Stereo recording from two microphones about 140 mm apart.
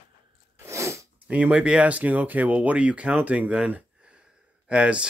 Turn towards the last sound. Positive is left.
turn(degrees=-5)  # may be behind; listen again after turning